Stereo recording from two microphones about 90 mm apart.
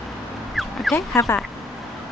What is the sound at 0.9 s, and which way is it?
Speech, 30° left (ahead or behind).